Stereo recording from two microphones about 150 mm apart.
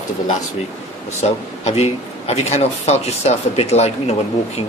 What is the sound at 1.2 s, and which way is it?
Speech, 45° left (ahead or behind).